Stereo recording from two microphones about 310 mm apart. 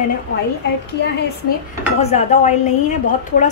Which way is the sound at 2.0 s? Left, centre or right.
Left.